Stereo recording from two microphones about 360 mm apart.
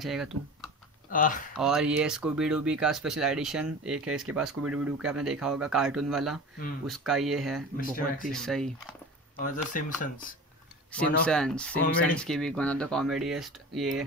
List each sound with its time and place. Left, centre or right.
0.0 s speech: centre
1.1 s speech: left
1.6 s speech: centre
7.7 s speech: left
8.2 s speech: centre
9.7 s speech: left
10.9 s speech: centre